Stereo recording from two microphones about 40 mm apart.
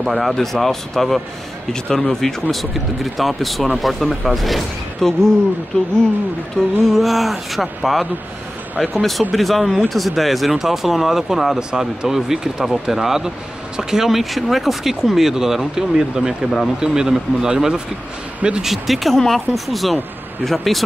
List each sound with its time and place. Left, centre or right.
0.0 s speech: centre
5.7 s speech: left
6.6 s speech: centre
6.9 s speech: centre
16.4 s speech: centre
16.8 s speech: centre
18.6 s speech: centre
19.1 s speech: centre